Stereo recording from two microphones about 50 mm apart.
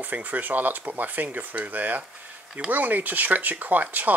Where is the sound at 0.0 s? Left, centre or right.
Right.